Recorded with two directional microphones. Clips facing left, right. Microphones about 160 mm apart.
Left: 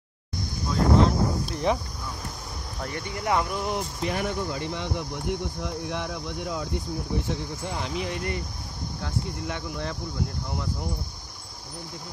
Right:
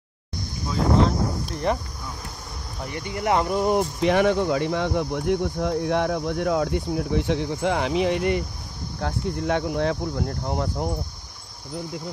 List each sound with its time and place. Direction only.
1.5 s speech: centre (ahead or behind)
2.9 s speech: 25° right (ahead or behind)
4.0 s speech: 80° right
9.0 s speech: 65° right (ahead or behind)